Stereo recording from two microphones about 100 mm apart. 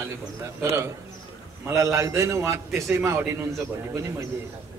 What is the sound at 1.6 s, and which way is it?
A man's voice, 30° right (ahead or behind).